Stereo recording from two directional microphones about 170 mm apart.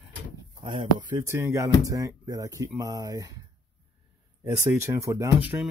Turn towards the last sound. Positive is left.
turn(degrees=-10)  # may be behind; listen again after turning